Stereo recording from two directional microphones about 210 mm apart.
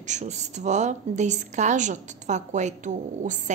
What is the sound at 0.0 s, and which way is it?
A woman's voice, 35° right (ahead or behind).